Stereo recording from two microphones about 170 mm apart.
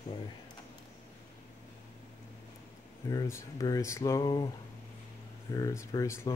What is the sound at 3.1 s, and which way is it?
Speech, 20° left (ahead or behind).